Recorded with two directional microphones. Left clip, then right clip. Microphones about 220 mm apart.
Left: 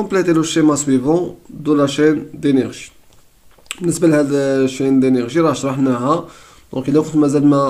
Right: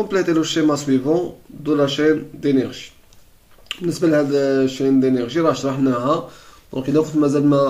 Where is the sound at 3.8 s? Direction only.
40° left (ahead or behind).